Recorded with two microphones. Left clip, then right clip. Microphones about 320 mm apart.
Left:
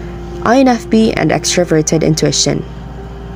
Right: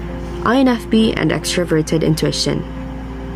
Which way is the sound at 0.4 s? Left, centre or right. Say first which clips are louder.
Left 5 dB; centre.